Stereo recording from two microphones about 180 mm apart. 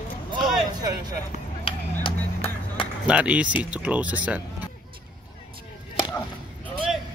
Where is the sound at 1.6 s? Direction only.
30° left (ahead or behind).